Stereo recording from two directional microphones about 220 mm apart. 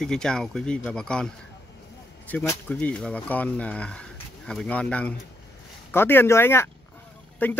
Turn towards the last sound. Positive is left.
turn(degrees=10)  # may be behind; listen again after turning